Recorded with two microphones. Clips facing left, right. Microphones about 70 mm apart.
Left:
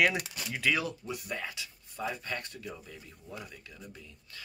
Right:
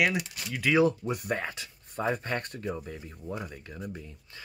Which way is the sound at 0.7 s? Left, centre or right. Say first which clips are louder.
Right 11 dB; right.